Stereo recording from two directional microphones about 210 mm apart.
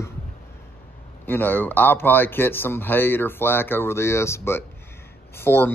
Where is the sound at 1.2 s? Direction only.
10° left (ahead or behind).